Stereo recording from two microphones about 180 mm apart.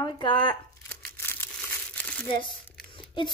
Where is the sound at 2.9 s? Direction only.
25° left (ahead or behind).